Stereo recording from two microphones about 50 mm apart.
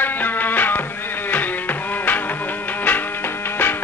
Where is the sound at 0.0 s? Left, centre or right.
Left.